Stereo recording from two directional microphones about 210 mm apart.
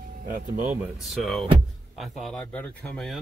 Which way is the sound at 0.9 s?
Centre (ahead or behind).